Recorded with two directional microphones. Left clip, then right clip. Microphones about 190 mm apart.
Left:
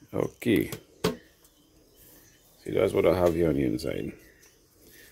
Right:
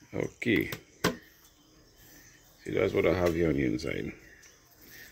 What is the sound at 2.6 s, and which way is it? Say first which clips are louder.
Speech: left 3 dB; 10° left (ahead or behind).